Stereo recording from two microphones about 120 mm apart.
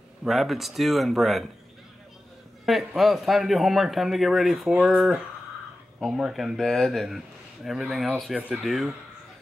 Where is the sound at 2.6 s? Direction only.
Centre (ahead or behind).